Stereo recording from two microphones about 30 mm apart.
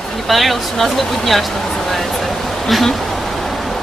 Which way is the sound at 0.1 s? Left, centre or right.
Centre.